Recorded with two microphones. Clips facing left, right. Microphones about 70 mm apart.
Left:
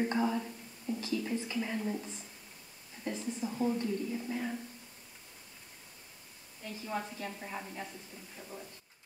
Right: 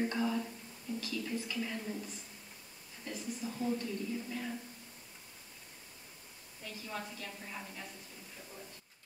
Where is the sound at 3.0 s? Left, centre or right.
Left.